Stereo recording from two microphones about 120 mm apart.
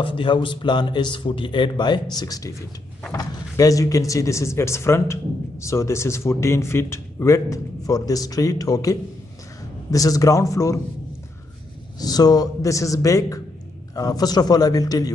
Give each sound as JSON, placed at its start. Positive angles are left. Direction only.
{"t": 0.0, "sound": "speech", "side_deg": 45}
{"t": 12.0, "sound": "speech", "side_deg": 35}